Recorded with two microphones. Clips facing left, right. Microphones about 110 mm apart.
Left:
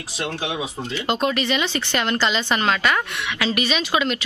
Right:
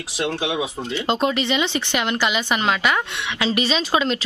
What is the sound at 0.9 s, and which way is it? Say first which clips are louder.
Speech: right 1 dB; 25° right (ahead or behind).